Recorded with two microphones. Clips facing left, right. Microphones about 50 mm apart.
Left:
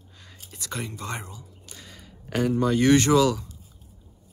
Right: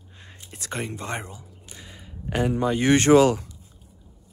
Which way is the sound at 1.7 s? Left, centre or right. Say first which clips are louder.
Right 3 dB; right.